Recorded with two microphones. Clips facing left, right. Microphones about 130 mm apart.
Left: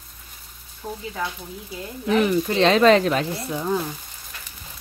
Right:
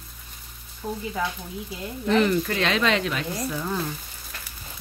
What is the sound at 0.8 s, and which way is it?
Speech, 5° left (ahead or behind).